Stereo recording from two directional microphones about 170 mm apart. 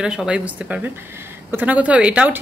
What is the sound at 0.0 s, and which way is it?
Speech, 5° right (ahead or behind).